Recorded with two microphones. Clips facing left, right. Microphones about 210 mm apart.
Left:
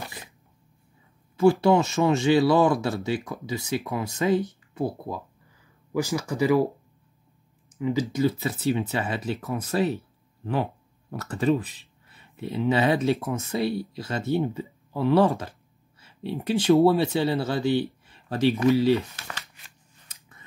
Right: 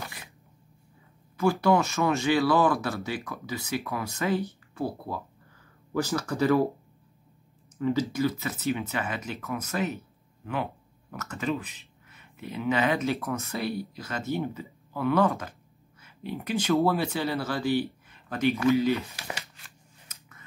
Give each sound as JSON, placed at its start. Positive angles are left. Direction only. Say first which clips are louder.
{"t": 1.3, "sound": "speech", "louder": "left 4 dB", "side_deg": 25}
{"t": 8.0, "sound": "speech", "louder": "left 3 dB", "side_deg": 25}
{"t": 18.0, "sound": "a sound", "louder": "left 3 dB", "side_deg": 30}
{"t": 18.7, "sound": "speech", "louder": "left 3 dB", "side_deg": 30}
{"t": 20.1, "sound": "scissors", "louder": "left 1 dB", "side_deg": 30}